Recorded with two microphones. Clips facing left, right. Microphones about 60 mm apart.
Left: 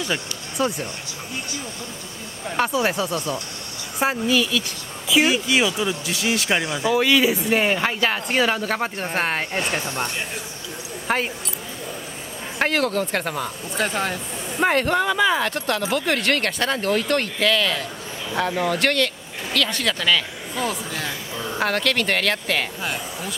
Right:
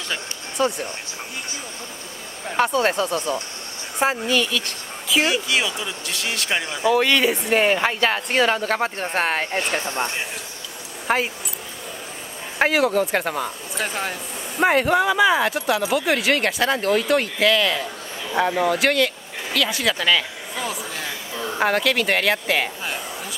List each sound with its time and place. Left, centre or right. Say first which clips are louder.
0.0 s speech: left 3 dB; centre
2.7 s speech: right 2 dB; centre
3.1 s speech: right 2 dB; right
4.0 s speech: even; centre
9.8 s speech: right 1 dB; right
11.1 s speech: right 2 dB; centre
12.5 s speech: right 3 dB; centre